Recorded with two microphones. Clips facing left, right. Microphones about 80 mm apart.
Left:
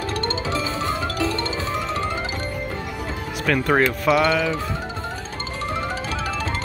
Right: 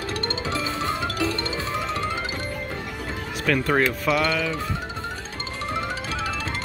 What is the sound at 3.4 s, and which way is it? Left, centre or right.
Speech, centre.